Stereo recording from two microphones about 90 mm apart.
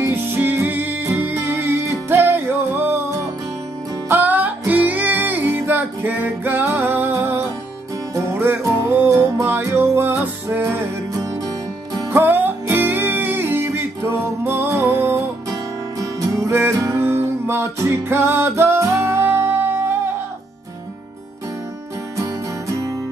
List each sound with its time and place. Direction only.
0.0 s music: 25° right (ahead or behind)
4.1 s music: 20° right (ahead or behind)
11.1 s music: 45° right (ahead or behind)
12.1 s music: 20° right (ahead or behind)
16.0 s music: 35° right (ahead or behind)
22.1 s music: 35° right (ahead or behind)